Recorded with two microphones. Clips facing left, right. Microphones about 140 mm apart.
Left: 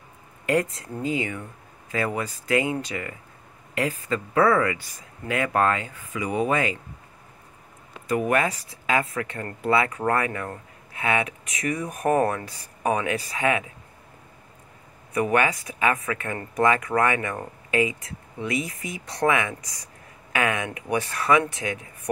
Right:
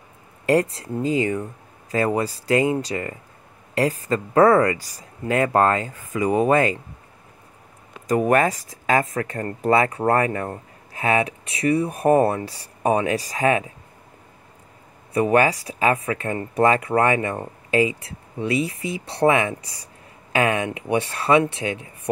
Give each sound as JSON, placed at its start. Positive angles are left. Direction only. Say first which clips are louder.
{"t": 0.5, "sound": "speech", "louder": "right 4 dB", "side_deg": -35}
{"t": 8.1, "sound": "speech", "louder": "right 5 dB", "side_deg": -40}
{"t": 15.1, "sound": "speech", "louder": "right 4 dB", "side_deg": -35}